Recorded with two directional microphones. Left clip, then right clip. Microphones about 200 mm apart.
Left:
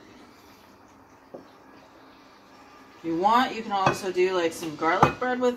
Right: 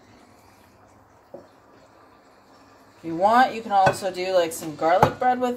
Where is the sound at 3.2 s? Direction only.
50° right (ahead or behind).